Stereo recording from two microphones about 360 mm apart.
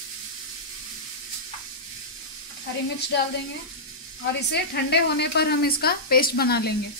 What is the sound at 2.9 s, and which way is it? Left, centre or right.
Speech, left.